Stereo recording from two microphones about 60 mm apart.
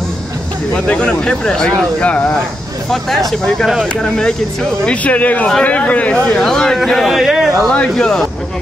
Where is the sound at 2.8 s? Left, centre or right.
Centre.